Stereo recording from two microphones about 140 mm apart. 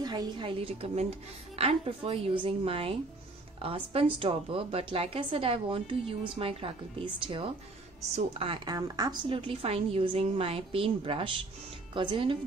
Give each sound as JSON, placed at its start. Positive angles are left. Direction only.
{"t": 0.0, "sound": "a woman's voice", "side_deg": -30}
{"t": 8.7, "sound": "a woman's voice", "side_deg": -25}
{"t": 9.3, "sound": "a woman's voice", "side_deg": -45}